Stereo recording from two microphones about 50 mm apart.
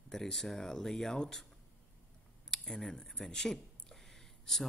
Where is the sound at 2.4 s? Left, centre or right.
Centre.